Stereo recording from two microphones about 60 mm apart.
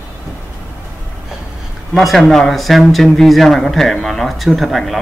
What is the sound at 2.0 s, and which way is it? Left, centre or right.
Speech, centre.